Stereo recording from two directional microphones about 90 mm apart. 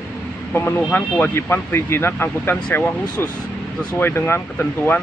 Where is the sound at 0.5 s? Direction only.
20° left (ahead or behind).